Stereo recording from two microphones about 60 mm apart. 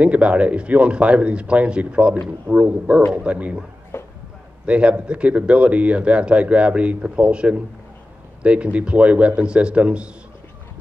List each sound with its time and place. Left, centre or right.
0.0 s speech: right
3.9 s a sound: left
4.6 s speech: centre